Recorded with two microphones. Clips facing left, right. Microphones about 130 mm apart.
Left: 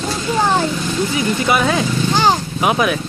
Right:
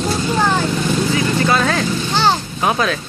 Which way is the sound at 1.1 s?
15° left (ahead or behind).